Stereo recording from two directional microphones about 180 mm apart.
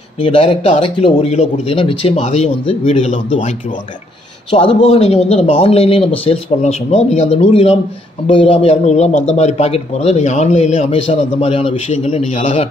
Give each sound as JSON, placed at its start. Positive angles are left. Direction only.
{"t": 0.2, "sound": "speech", "side_deg": 30}